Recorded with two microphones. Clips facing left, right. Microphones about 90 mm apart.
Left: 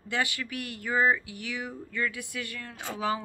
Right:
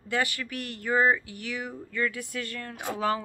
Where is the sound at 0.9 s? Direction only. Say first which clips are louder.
Right 2 dB; 5° left (ahead or behind).